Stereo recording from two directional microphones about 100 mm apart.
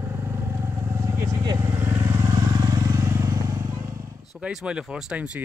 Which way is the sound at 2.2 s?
45° right (ahead or behind).